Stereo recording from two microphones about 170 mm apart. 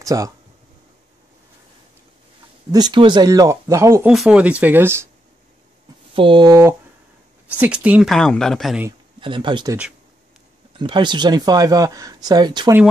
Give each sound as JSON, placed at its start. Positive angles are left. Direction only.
{"t": 0.0, "sound": "speech", "side_deg": -20}
{"t": 2.7, "sound": "speech", "side_deg": -25}
{"t": 4.1, "sound": "speech", "side_deg": -5}
{"t": 6.1, "sound": "speech", "side_deg": -30}
{"t": 7.4, "sound": "a woman's voice", "side_deg": -10}
{"t": 9.2, "sound": "speech", "side_deg": -30}
{"t": 10.8, "sound": "speech", "side_deg": -25}